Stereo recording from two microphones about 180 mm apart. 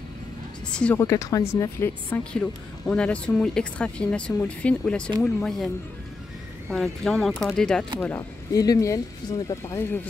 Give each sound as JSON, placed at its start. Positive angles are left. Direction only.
{"t": 0.7, "sound": "a woman's voice", "side_deg": 5}
{"t": 0.9, "sound": "speech", "side_deg": 15}
{"t": 6.7, "sound": "speech", "side_deg": 0}
{"t": 8.0, "sound": "speech", "side_deg": 15}